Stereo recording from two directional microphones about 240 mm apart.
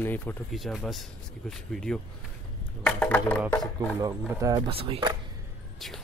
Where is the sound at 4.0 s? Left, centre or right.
Centre.